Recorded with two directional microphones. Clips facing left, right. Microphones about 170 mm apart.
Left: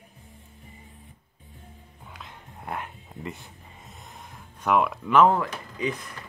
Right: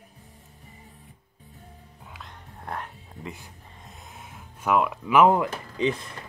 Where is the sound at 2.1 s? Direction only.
5° left (ahead or behind).